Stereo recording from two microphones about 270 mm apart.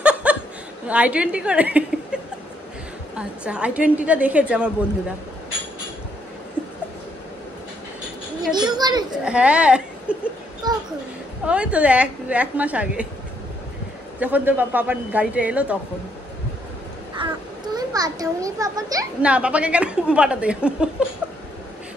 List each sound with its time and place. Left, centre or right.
0.0 s chuckle: centre
0.8 s a child's voice: centre
3.2 s a child's voice: centre
8.5 s children playing: centre
9.1 s a sound: centre
10.6 s a sound: centre
11.4 s a child's voice: centre
14.2 s a child's voice: centre
17.2 s a sound: centre
17.7 s a child's voice: centre